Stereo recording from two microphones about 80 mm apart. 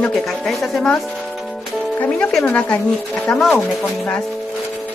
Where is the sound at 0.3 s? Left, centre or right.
Centre.